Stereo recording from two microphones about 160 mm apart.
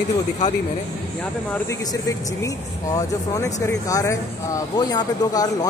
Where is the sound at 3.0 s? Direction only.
20° left (ahead or behind).